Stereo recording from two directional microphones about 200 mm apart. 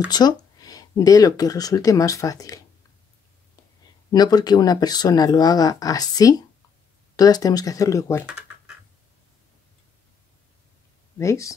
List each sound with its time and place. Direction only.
0.1 s speech: 20° left (ahead or behind)
4.1 s speech: 20° left (ahead or behind)
8.3 s scratch: 5° right (ahead or behind)
11.1 s speech: 15° left (ahead or behind)